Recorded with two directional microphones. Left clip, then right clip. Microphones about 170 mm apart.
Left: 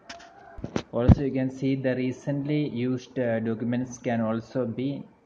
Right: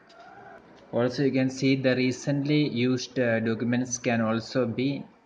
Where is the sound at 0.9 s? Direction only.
10° right (ahead or behind).